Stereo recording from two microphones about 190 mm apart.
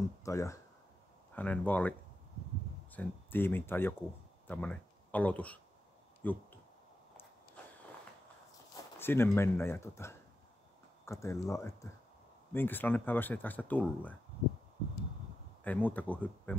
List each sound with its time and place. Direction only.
0.2 s speech: 15° left (ahead or behind)
9.0 s speech: 10° left (ahead or behind)
15.6 s speech: 10° left (ahead or behind)